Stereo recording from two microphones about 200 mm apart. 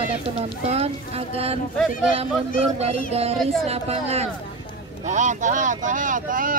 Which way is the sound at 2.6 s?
30° right (ahead or behind).